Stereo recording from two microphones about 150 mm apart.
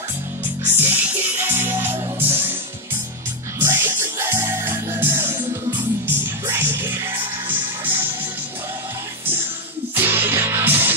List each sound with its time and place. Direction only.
0.7 s music: 15° right (ahead or behind)
3.5 s music: 15° right (ahead or behind)
6.4 s music: 15° right (ahead or behind)
9.9 s music: 15° right (ahead or behind)